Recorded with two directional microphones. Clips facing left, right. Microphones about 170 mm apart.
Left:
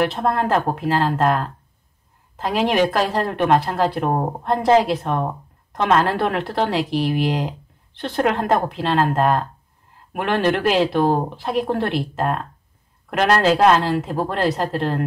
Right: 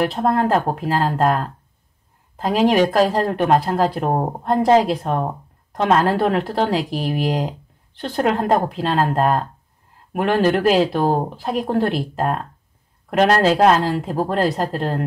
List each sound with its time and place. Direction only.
0.0 s speech: 35° right (ahead or behind)